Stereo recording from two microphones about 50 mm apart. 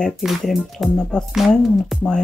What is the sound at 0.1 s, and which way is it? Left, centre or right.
Speech, centre.